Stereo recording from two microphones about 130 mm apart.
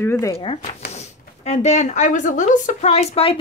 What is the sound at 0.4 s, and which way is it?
Speech, 45° left (ahead or behind).